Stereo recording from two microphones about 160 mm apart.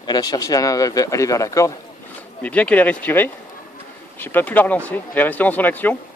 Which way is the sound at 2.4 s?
10° left (ahead or behind).